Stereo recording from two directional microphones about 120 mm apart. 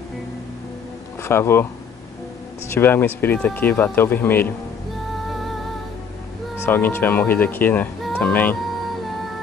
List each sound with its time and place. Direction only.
1.2 s speech: 20° left (ahead or behind)
2.7 s speech: 15° left (ahead or behind)
6.6 s speech: 15° left (ahead or behind)